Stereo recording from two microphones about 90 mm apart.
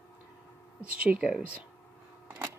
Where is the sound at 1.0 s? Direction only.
10° right (ahead or behind).